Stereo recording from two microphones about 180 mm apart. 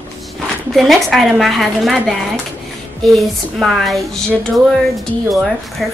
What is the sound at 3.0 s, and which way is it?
Speech, centre (ahead or behind).